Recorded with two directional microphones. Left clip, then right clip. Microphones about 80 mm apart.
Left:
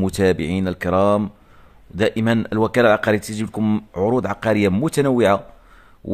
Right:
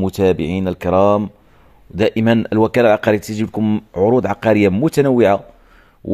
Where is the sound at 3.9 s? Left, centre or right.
Centre.